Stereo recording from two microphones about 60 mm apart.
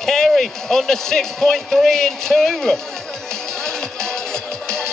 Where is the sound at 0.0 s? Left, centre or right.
Centre.